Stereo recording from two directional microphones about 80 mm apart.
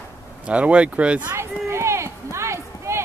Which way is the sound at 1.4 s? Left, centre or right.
Right.